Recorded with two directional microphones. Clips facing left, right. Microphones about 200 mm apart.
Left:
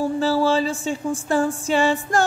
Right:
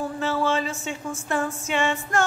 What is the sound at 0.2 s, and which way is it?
Music, 35° left (ahead or behind).